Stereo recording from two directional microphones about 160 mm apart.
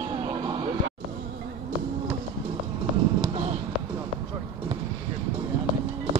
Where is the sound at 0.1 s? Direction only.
30° right (ahead or behind).